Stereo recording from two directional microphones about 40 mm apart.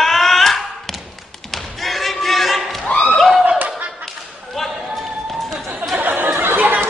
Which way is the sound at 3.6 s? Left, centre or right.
Right.